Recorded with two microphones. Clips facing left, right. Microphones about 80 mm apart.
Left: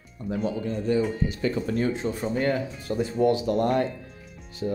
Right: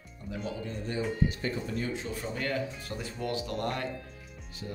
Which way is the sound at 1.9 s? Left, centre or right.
Left.